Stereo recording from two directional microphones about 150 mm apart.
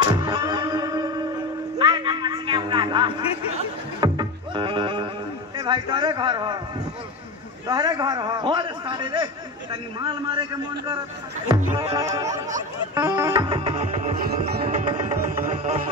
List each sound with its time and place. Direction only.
0.0 s music: 30° right (ahead or behind)
1.8 s a sound: 30° right (ahead or behind)
4.0 s music: 30° right (ahead or behind)
7.6 s a man's voice: 25° right (ahead or behind)
12.9 s music: 20° right (ahead or behind); by 15.8 s 45° right (ahead or behind)